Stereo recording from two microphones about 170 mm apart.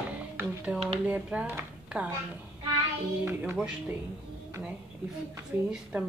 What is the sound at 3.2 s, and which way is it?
Speech, 10° right (ahead or behind).